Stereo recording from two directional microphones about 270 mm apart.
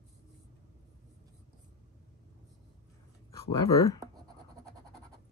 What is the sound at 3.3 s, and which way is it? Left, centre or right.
Speech, centre.